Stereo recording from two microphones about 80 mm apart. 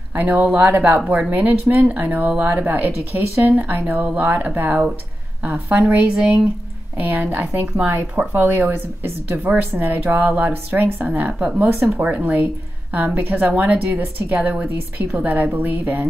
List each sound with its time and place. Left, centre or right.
0.1 s speech: right
0.7 s speech: right